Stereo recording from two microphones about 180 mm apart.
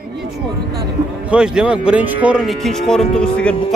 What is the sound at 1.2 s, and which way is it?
Speech, 5° right (ahead or behind).